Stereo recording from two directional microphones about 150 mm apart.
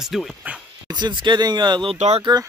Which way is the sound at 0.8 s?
30° right (ahead or behind).